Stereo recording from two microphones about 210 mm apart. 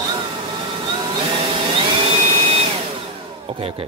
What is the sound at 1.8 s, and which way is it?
Vacuum cleaner, 25° right (ahead or behind).